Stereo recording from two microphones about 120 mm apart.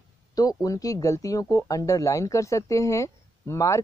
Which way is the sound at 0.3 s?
30° left (ahead or behind).